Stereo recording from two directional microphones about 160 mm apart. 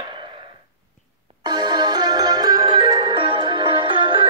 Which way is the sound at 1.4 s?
25° right (ahead or behind).